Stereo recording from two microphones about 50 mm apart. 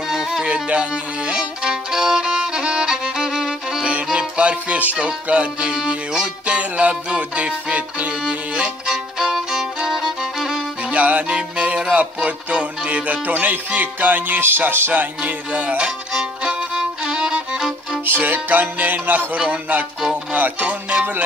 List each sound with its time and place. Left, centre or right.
0.1 s music: centre
0.5 s violin: right; by 3.8 s centre
3.8 s music: right; by 10.6 s centre
10.9 s music: right
16.1 s music: centre
18.0 s music: right
20.3 s music: right